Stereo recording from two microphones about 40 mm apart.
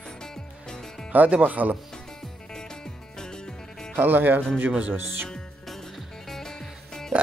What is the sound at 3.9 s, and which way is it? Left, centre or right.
Speech, right.